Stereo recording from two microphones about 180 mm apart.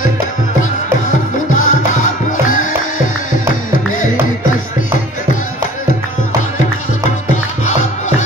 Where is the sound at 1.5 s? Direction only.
45° left (ahead or behind).